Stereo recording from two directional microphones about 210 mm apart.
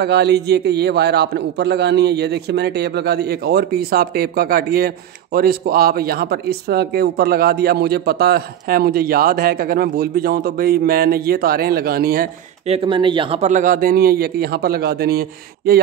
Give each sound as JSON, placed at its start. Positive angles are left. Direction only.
{"t": 0.0, "sound": "a man's voice", "side_deg": -50}
{"t": 12.6, "sound": "a man's voice", "side_deg": -25}